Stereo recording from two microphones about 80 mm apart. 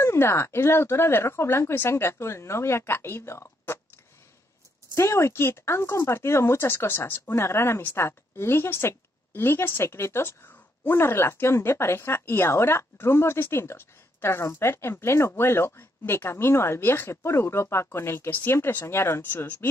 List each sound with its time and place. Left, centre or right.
0.0 s speech: left
4.9 s speech: left